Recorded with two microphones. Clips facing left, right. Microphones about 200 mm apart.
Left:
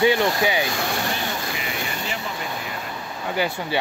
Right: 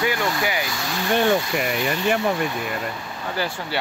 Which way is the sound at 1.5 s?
55° right (ahead or behind).